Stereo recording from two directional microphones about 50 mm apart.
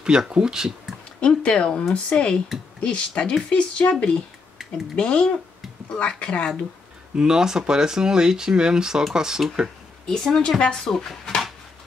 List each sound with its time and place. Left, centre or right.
0.0 s speech: centre
1.2 s speech: centre
4.9 s speech: left
7.2 s speech: centre
10.0 s a woman's voice: centre